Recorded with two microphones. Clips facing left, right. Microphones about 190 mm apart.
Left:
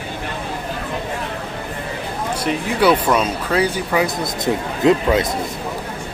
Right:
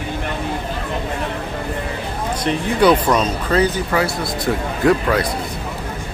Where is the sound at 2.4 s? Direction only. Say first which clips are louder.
Right 2 dB; 5° left (ahead or behind).